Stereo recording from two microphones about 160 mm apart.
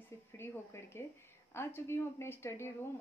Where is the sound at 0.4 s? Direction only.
15° left (ahead or behind).